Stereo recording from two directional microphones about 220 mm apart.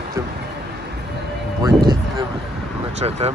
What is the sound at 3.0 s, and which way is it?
Speech, 25° right (ahead or behind).